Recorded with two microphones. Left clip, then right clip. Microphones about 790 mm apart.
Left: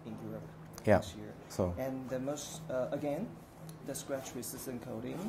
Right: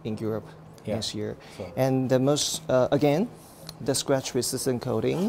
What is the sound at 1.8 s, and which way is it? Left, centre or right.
Speech, right.